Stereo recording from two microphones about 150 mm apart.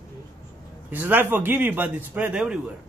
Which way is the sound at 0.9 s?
10° right (ahead or behind).